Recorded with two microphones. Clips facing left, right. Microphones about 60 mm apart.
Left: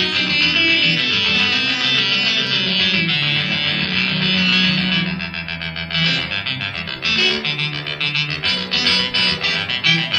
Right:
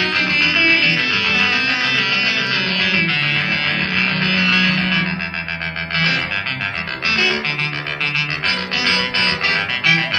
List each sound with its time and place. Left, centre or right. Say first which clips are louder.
0.0 s music: right 2 dB; right
7.1 s music: right 1 dB; right
8.5 s music: right 2 dB; right